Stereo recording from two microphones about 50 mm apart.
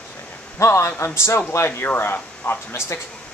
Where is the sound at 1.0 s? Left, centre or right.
Left.